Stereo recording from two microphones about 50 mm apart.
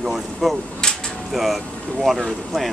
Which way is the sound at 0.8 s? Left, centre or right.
Centre.